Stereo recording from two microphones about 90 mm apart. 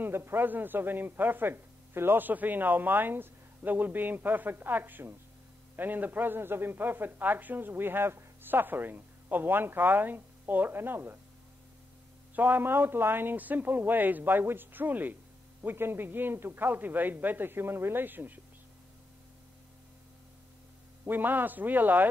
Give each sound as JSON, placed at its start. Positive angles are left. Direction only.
{"t": 0.0, "sound": "a man's voice", "side_deg": -25}
{"t": 12.4, "sound": "a man's voice", "side_deg": -20}
{"t": 21.0, "sound": "a man's voice", "side_deg": -20}